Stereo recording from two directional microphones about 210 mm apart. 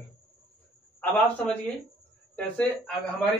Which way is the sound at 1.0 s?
5° left (ahead or behind).